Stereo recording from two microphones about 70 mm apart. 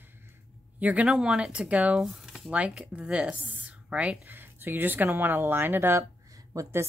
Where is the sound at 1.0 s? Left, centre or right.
Centre.